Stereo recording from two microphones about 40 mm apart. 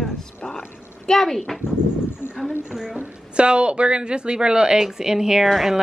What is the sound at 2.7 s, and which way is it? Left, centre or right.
Speech, centre.